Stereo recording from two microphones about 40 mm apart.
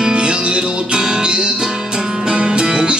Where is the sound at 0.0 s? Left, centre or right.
Right.